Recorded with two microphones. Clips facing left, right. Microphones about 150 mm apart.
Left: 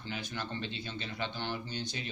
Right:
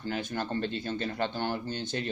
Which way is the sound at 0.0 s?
45° right (ahead or behind).